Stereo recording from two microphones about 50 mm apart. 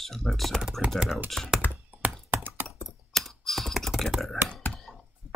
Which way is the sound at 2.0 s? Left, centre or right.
Right.